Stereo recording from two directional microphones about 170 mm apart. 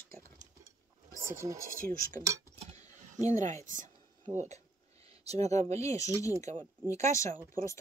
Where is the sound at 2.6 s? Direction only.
40° right (ahead or behind).